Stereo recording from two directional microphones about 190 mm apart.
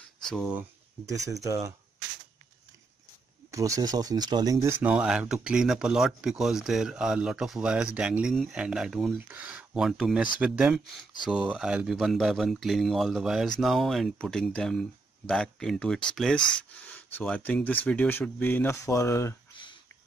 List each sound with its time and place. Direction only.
0.2 s speech: centre (ahead or behind)
0.6 s speech: 15° right (ahead or behind)
3.5 s speech: 15° right (ahead or behind); by 19.3 s 15° left (ahead or behind)
19.5 s a sound: 25° left (ahead or behind)